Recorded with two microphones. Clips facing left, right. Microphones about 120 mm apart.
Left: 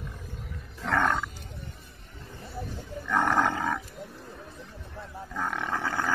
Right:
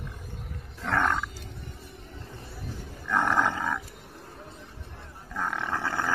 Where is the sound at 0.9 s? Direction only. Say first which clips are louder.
Left 1 dB; 20° left (ahead or behind).